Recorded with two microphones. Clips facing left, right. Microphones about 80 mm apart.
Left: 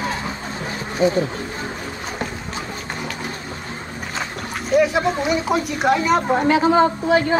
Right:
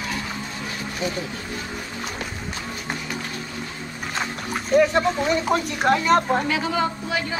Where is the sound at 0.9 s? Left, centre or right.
Left.